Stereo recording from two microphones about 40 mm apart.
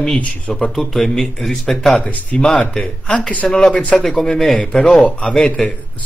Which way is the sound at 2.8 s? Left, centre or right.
Left.